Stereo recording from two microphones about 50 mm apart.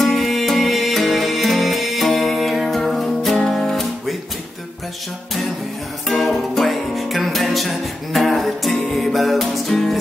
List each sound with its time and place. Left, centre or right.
0.0 s music: centre
6.0 s music: centre